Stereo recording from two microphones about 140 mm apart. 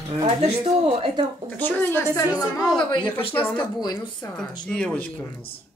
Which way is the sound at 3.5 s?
30° left (ahead or behind).